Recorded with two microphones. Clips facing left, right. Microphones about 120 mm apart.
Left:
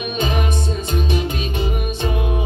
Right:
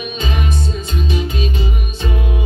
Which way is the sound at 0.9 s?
55° left (ahead or behind).